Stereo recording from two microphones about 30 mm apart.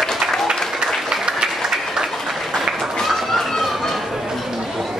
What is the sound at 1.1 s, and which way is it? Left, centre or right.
Applause, centre.